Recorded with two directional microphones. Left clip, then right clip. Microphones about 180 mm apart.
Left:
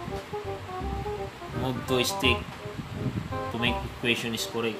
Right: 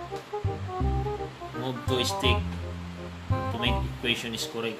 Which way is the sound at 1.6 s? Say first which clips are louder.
Left 1 dB; 5° left (ahead or behind).